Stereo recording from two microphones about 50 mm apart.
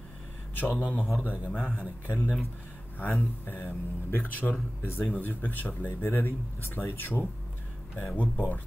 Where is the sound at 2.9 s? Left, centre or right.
Left.